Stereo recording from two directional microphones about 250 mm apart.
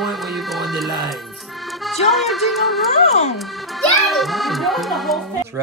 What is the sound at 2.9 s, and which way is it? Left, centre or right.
Speech, left.